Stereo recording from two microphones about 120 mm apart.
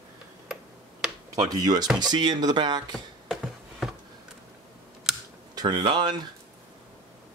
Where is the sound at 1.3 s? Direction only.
35° right (ahead or behind).